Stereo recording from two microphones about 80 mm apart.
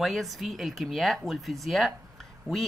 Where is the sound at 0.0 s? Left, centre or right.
Centre.